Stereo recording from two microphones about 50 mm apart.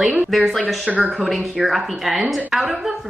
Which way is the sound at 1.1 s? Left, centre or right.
Centre.